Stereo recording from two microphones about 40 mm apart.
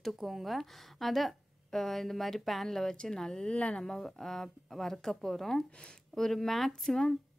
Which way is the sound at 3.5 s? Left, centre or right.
Left.